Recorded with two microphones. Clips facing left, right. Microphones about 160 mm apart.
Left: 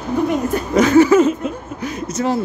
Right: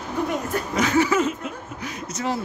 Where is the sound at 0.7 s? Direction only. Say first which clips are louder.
Left 10 dB; 45° left (ahead or behind).